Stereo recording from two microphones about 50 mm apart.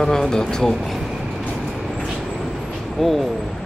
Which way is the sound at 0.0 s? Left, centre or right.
Centre.